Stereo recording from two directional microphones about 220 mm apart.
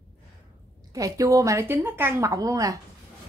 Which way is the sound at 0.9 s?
15° right (ahead or behind).